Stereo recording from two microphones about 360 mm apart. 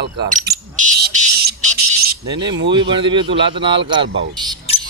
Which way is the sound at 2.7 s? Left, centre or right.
Centre.